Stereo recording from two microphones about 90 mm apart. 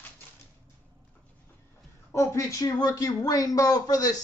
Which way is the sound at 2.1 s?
35° left (ahead or behind).